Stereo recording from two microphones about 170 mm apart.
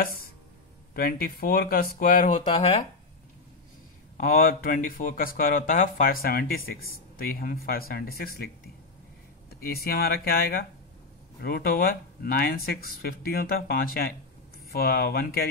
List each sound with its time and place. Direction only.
0.9 s speech: 60° left (ahead or behind); by 2.9 s 40° left (ahead or behind)
4.2 s speech: 55° left (ahead or behind)
9.6 s speech: 65° left (ahead or behind)